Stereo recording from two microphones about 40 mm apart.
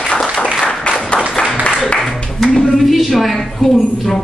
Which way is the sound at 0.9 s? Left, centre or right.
Left.